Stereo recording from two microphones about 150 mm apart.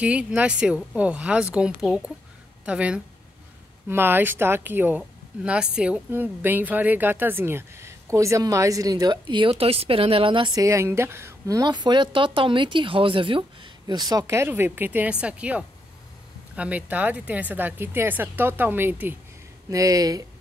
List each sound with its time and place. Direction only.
0.0 s speech: 10° right (ahead or behind); by 20.2 s 25° right (ahead or behind)